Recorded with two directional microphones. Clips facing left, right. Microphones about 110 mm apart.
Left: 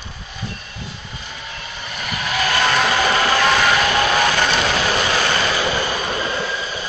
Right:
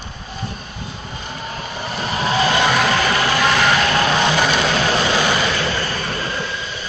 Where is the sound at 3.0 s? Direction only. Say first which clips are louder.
Left 1 dB; centre (ahead or behind).